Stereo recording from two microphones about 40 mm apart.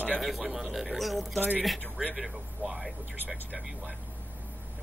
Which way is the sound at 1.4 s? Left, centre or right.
Right.